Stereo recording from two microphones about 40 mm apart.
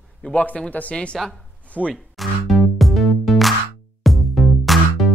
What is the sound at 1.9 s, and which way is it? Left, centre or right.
Music, centre.